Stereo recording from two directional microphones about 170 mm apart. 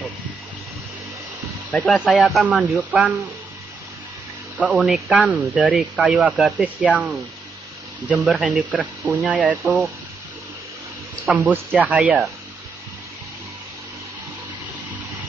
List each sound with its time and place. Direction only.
1.7 s speech: 5° left (ahead or behind)
4.6 s speech: 5° right (ahead or behind)
11.5 s speech: 10° right (ahead or behind)